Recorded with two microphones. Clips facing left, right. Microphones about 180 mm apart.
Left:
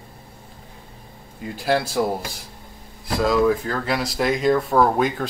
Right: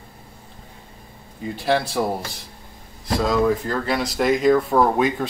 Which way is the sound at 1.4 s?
Centre (ahead or behind).